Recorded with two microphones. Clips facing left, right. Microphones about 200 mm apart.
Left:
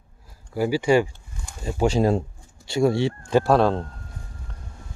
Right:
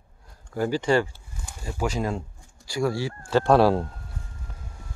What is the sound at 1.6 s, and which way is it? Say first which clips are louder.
Speech: left 7 dB; 25° left (ahead or behind).